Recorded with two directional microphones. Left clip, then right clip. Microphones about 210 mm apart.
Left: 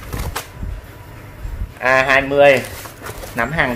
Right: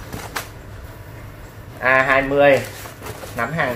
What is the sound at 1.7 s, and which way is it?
A woman's voice, 55° left (ahead or behind).